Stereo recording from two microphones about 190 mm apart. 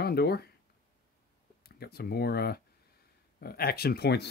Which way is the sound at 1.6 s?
55° left (ahead or behind).